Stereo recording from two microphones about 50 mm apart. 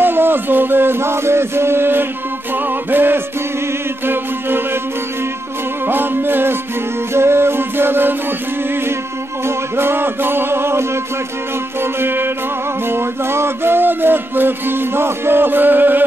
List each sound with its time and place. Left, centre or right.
0.0 s music: right
5.9 s music: right
9.5 s music: right